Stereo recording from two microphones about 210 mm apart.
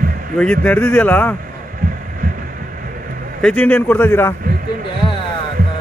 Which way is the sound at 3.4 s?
10° left (ahead or behind).